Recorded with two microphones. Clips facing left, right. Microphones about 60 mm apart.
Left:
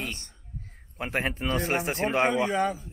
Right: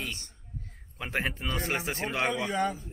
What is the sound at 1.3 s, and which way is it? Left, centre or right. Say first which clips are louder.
A man's voice: left 5 dB; left.